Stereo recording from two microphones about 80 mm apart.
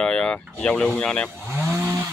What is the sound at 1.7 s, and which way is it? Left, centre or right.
Chainsaw, right.